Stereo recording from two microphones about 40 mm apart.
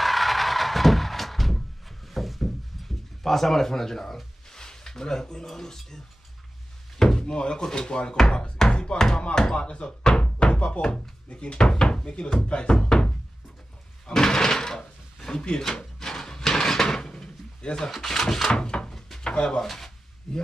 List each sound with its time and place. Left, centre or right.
0.0 s a sound: centre
3.3 s speech: centre
7.0 s speech: centre
12.8 s knock: left
14.0 s drawer open or close: centre
15.8 s a sound: centre
17.8 s speech: centre
18.9 s a sound: centre
19.2 s speech: left
19.6 s speech: centre